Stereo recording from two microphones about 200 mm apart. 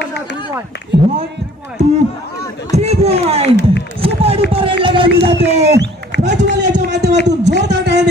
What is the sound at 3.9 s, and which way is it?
Run, 30° right (ahead or behind).